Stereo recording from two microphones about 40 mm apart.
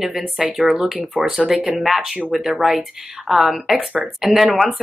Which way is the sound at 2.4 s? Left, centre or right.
Centre.